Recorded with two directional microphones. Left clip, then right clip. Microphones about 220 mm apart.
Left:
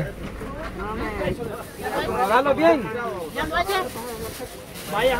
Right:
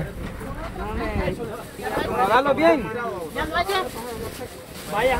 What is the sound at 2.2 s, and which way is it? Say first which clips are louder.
Speech: even; 35° right (ahead or behind).